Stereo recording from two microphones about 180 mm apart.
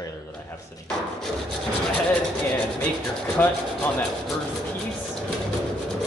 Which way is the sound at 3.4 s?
10° left (ahead or behind).